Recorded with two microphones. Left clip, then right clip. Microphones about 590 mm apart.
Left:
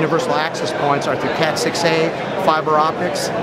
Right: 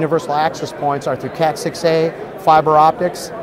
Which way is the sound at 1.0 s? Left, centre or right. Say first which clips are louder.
Even; right.